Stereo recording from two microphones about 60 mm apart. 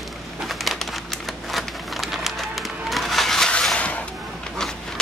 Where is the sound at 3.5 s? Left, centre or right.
Centre.